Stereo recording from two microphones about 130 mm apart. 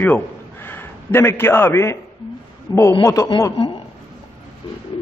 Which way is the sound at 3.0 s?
25° left (ahead or behind).